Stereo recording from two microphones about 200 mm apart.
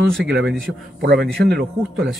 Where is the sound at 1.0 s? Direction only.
50° right (ahead or behind).